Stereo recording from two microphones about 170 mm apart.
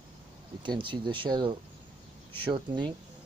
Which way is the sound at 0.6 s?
30° right (ahead or behind).